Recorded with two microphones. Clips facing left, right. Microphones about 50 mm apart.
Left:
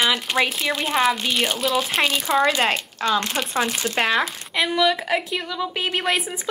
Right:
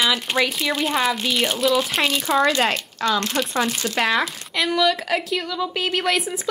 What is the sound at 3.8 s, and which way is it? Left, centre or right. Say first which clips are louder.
Speech: even; left.